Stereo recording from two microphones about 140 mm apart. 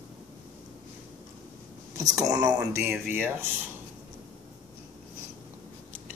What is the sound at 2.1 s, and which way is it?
Speech, 25° right (ahead or behind).